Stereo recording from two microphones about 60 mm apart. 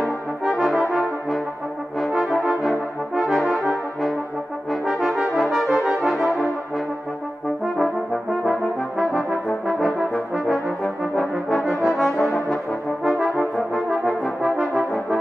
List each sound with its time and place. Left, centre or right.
0.0 s brass instrument: centre
8.5 s brass instrument: centre
12.2 s brass instrument: left
13.0 s brass instrument: centre